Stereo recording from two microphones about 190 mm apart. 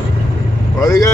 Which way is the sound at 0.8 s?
15° left (ahead or behind).